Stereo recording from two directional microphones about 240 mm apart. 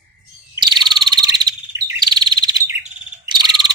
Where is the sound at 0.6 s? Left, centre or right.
Centre.